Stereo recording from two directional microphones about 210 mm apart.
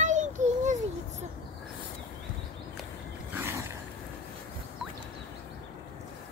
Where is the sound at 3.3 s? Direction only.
10° right (ahead or behind).